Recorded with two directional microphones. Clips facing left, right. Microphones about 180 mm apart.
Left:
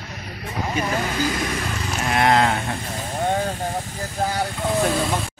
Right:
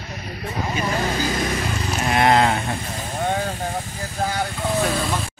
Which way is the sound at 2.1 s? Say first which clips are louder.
Right 1 dB; centre (ahead or behind).